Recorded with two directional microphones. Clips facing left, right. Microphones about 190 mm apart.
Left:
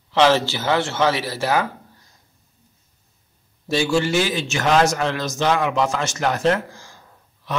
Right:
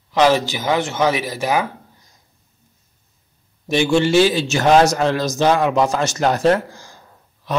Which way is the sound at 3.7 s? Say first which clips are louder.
Right 4 dB; 20° right (ahead or behind).